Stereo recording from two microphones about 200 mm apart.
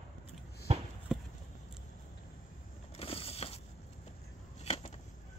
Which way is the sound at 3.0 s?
30° left (ahead or behind).